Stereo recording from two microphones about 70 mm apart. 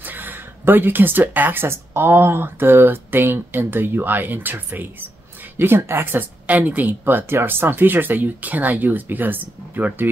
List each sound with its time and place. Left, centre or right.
0.0 s speech: right
6.4 s speech: right